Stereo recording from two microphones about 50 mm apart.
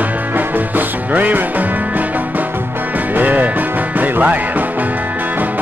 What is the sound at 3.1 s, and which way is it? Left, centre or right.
Music, right.